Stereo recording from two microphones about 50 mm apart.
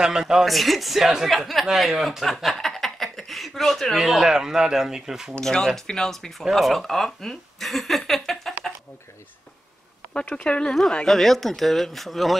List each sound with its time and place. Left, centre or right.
0.0 s speech: centre
0.5 s speech: centre
2.2 s chuckle: centre
4.1 s speech: centre
5.4 s speech: centre
10.3 s speech: left
10.7 s speech: centre